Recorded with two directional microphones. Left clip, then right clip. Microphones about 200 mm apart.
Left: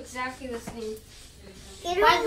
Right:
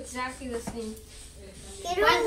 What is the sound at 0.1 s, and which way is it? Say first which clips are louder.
Speech: left 1 dB; 15° right (ahead or behind).